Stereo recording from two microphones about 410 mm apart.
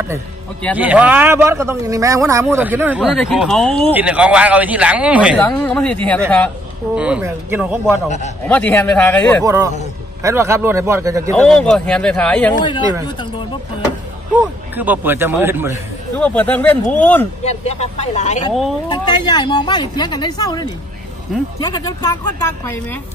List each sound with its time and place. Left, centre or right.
0.1 s speech: centre
9.4 s a man's voice: centre
14.3 s speech: centre
17.5 s speech: centre
18.5 s speech: centre
18.9 s speech: centre